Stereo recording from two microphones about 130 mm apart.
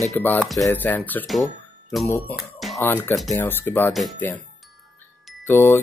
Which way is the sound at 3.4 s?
15° left (ahead or behind).